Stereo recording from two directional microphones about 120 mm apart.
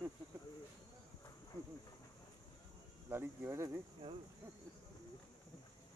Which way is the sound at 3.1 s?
20° right (ahead or behind).